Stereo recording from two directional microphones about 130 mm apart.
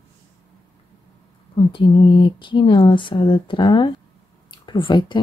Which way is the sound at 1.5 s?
40° left (ahead or behind).